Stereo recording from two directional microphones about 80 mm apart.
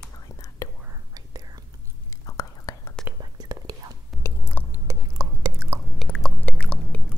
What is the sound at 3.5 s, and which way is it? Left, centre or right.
Whispering, right.